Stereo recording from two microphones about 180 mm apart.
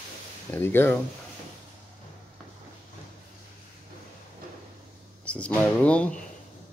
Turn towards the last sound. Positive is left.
turn(degrees=5)  # may be behind; listen again after turning